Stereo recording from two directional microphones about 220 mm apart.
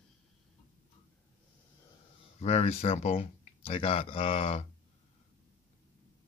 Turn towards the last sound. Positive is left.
turn(degrees=25)  # may be behind; listen again after turning